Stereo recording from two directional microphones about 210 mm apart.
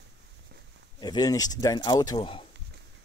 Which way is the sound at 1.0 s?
20° left (ahead or behind).